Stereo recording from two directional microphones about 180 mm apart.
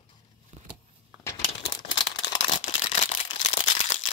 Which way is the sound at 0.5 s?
35° right (ahead or behind).